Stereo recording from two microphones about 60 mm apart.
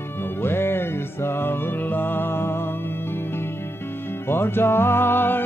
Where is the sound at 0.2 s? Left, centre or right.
Left.